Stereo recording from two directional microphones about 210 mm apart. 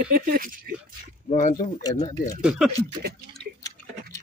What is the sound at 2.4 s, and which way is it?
Speech, 5° right (ahead or behind).